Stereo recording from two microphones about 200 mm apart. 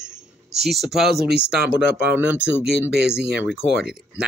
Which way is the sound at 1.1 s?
55° right (ahead or behind).